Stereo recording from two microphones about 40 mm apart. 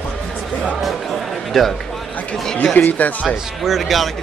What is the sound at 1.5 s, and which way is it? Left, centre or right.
Speech, centre.